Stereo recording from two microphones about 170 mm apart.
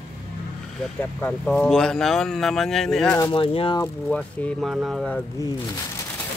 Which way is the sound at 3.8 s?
5° left (ahead or behind).